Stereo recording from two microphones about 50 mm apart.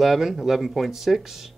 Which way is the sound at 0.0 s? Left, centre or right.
Centre.